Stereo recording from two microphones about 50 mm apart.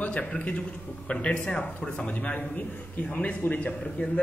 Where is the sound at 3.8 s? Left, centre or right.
Centre.